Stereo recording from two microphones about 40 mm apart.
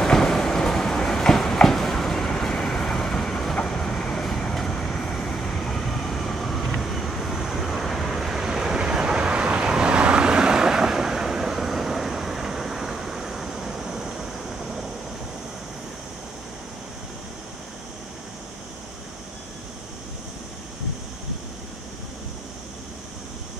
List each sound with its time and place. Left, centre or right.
0.0 s train: centre
2.2 s vehicle: centre
3.6 s train: centre
4.2 s vehicle: centre